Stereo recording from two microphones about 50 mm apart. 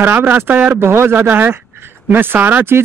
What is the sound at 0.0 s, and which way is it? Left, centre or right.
Speech, right.